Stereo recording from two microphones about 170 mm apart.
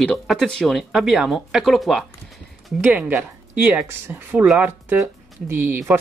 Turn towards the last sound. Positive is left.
turn(degrees=-10)  # may be behind; listen again after turning